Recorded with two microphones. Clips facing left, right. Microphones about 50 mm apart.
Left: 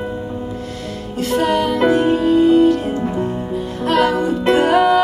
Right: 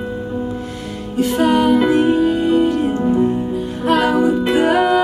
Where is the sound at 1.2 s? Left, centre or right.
Centre.